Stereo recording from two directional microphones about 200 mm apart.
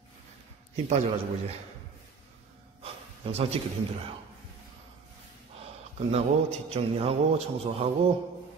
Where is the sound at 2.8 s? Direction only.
30° right (ahead or behind).